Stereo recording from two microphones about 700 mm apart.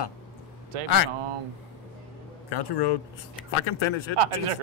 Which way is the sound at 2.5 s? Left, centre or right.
Left.